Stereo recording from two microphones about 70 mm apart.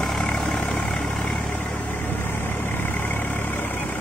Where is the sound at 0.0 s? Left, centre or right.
Centre.